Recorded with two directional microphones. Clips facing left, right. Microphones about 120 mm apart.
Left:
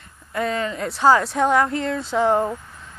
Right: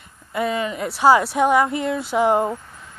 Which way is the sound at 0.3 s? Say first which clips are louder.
Right 1 dB; 10° right (ahead or behind).